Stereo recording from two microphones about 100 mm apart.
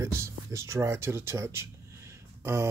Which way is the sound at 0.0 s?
30° right (ahead or behind).